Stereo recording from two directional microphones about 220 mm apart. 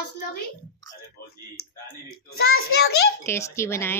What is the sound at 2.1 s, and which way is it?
Speech, 45° left (ahead or behind).